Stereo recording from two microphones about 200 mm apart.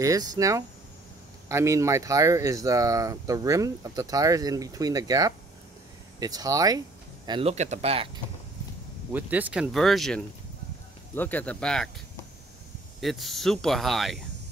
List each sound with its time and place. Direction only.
0.0 s speech: 15° right (ahead or behind)
9.1 s speech: 10° right (ahead or behind)
13.0 s speech: centre (ahead or behind)